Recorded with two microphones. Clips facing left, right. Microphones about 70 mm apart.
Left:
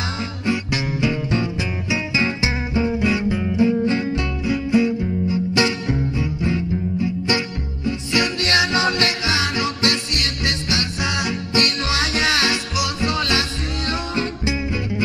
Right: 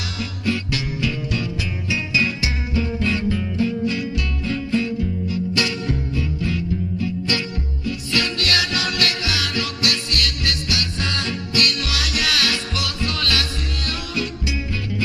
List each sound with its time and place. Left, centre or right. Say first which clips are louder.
0.2 s music: right 1 dB; left
4.5 s music: left 4 dB; centre